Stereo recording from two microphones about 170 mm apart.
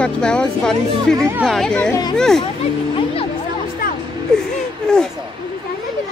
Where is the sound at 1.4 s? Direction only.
Centre (ahead or behind).